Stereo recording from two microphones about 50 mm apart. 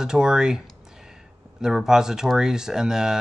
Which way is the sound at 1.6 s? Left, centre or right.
Centre.